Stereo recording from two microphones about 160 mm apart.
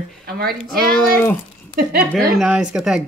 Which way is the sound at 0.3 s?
75° right (ahead or behind).